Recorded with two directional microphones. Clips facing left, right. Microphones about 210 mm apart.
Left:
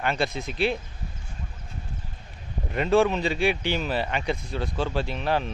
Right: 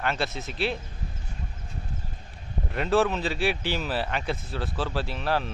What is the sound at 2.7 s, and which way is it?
Speech, centre (ahead or behind).